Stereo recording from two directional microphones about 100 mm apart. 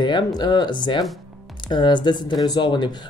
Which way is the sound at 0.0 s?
45° left (ahead or behind).